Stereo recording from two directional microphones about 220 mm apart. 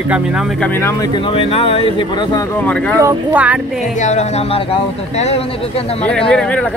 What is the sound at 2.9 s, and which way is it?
Speech, 10° right (ahead or behind).